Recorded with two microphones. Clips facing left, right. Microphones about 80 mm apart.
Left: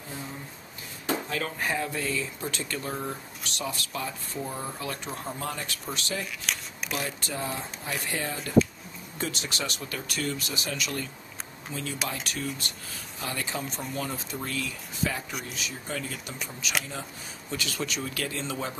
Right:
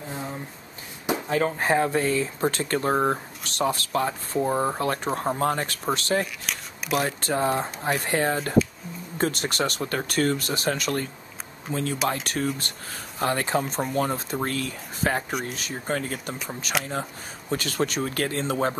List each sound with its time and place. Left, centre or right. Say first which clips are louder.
1.3 s speech: right 8 dB; right
6.5 s a sound: even; centre
6.9 s speech: right 9 dB; right